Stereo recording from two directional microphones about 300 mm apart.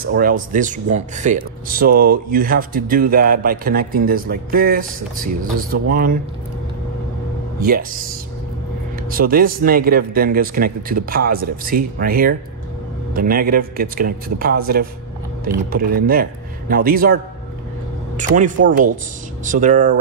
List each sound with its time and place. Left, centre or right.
0.0 s speech: right
7.6 s speech: right
9.1 s speech: right